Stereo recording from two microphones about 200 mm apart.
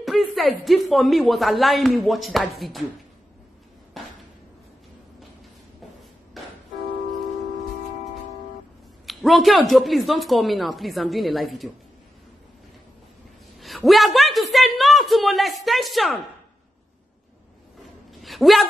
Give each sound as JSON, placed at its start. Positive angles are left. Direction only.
{"t": 0.0, "sound": "speech", "side_deg": 0}
{"t": 3.9, "sound": "a sound", "side_deg": 0}
{"t": 6.4, "sound": "music", "side_deg": 0}
{"t": 9.0, "sound": "speech", "side_deg": 0}
{"t": 13.6, "sound": "speech", "side_deg": 0}
{"t": 18.2, "sound": "a sound", "side_deg": 0}